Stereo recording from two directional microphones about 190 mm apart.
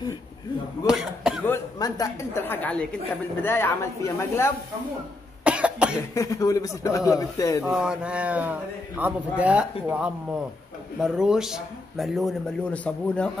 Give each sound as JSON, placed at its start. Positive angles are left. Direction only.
{"t": 0.8, "sound": "speech", "side_deg": -5}
{"t": 1.4, "sound": "a woman's voice", "side_deg": 15}
{"t": 5.4, "sound": "cough", "side_deg": -5}
{"t": 6.1, "sound": "speech", "side_deg": 15}
{"t": 7.7, "sound": "speech", "side_deg": -5}